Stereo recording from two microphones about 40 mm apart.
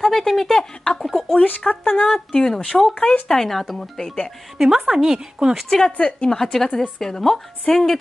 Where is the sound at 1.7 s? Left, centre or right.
Left.